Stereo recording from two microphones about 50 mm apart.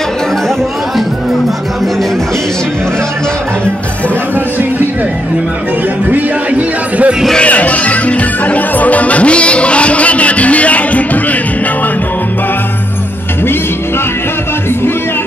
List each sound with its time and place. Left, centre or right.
7.3 s music: left